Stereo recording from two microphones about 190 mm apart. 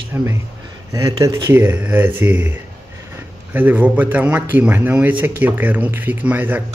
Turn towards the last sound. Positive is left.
turn(degrees=-10)  # may be behind; listen again after turning